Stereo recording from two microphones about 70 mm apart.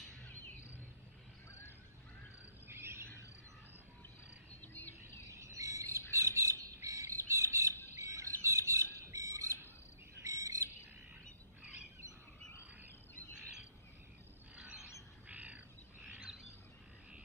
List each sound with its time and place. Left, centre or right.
2.7 s a sound: right
4.6 s a sound: left
5.3 s cricket: right
6.1 s squawk: right
8.0 s bird: right
14.5 s mechanisms: right
15.2 s bird: right